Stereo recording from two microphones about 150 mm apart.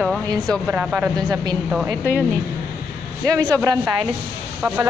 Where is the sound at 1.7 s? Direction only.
5° right (ahead or behind).